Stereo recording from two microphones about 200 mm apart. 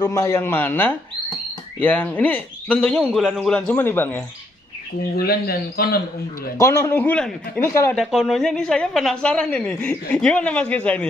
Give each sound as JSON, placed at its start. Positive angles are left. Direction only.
{"t": 0.0, "sound": "a man's voice", "side_deg": 15}
{"t": 5.1, "sound": "speech", "side_deg": 50}
{"t": 6.6, "sound": "a man's voice", "side_deg": 10}
{"t": 7.6, "sound": "a man's voice", "side_deg": 15}
{"t": 7.9, "sound": "speech", "side_deg": 0}